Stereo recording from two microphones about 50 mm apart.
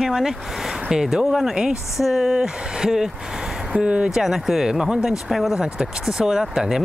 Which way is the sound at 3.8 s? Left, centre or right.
Right.